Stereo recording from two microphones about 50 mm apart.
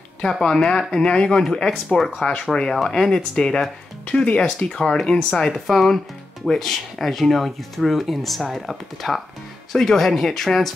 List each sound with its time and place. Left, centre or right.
0.2 s speech: centre
5.5 s speech: centre